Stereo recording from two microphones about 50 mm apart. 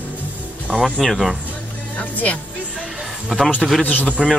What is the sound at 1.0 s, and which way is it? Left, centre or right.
Speech, centre.